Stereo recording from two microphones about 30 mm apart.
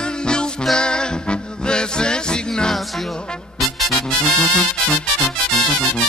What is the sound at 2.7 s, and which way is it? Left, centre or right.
Music, centre.